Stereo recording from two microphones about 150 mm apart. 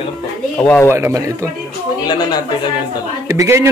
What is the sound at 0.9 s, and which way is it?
Speech, 20° right (ahead or behind).